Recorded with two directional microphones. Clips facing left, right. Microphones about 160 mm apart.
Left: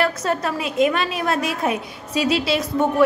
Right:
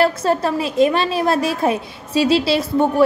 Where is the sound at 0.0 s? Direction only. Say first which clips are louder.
Right 5 dB; 30° right (ahead or behind).